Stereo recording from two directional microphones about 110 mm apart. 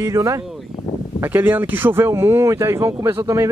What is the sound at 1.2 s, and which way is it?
Speech, 20° right (ahead or behind).